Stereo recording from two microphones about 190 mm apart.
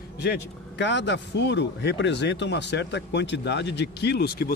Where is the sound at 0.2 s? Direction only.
65° left (ahead or behind).